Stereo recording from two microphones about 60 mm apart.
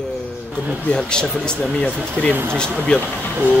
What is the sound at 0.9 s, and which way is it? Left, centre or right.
Speech, centre.